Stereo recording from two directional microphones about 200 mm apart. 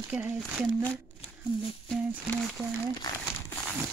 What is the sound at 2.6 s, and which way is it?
Speech, centre (ahead or behind).